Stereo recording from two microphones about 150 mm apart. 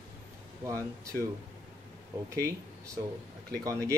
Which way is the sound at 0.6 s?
20° right (ahead or behind).